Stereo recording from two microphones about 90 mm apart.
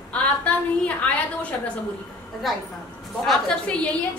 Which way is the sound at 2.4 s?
Centre (ahead or behind).